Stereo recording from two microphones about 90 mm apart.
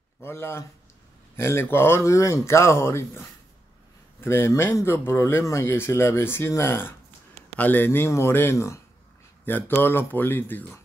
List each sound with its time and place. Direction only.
0.2 s speech: 25° left (ahead or behind)